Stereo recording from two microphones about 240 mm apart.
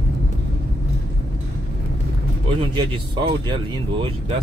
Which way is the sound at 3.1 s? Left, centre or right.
Centre.